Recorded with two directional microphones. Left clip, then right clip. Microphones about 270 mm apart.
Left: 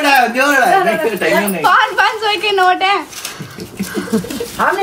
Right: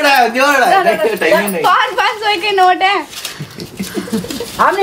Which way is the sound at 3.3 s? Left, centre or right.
Centre.